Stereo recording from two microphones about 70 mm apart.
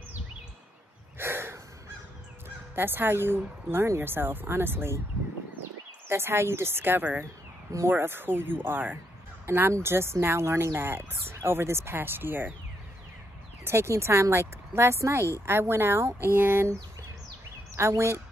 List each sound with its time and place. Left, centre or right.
1.1 s snort: right
2.7 s speech: right
6.0 s speech: right
13.7 s speech: right
17.7 s speech: right